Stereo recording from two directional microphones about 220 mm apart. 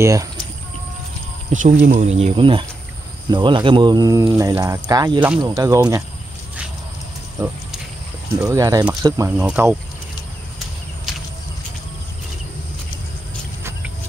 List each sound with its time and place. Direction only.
0.0 s speech: 15° right (ahead or behind)
1.5 s speech: 35° right (ahead or behind); by 6.0 s 15° right (ahead or behind)
7.4 s speech: 15° right (ahead or behind)